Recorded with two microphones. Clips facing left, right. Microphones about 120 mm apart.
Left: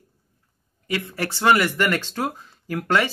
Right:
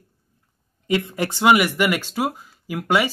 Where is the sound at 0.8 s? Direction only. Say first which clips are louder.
Right 5 dB; 20° right (ahead or behind).